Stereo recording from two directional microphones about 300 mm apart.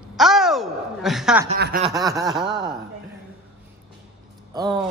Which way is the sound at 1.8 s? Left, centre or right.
Centre.